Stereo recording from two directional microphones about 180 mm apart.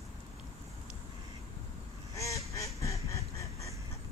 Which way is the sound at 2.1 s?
15° left (ahead or behind).